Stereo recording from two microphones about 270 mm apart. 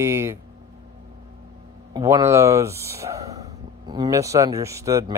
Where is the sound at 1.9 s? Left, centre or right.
Centre.